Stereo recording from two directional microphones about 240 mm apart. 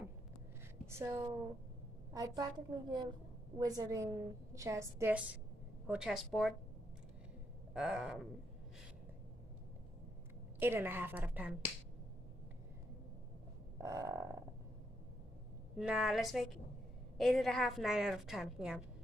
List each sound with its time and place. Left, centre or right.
0.8 s a woman's voice: centre
7.7 s a woman's voice: centre
10.6 s a woman's voice: centre
13.7 s a woman's voice: centre
15.8 s a woman's voice: centre